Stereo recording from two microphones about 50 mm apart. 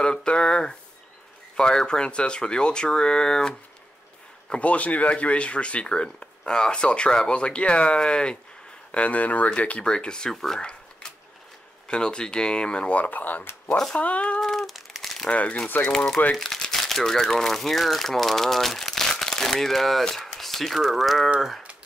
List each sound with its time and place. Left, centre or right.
0.0 s a sound: centre
1.6 s speech: centre
4.5 s speech: left
9.8 s speech: centre
10.6 s a sound: centre
11.9 s speech: centre
14.4 s crumpling: centre
15.2 s speech: left
15.8 s speech: centre